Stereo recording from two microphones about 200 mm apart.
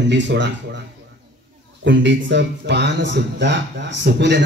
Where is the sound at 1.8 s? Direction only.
65° right (ahead or behind).